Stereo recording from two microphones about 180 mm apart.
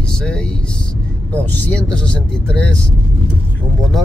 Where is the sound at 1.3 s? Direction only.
10° left (ahead or behind).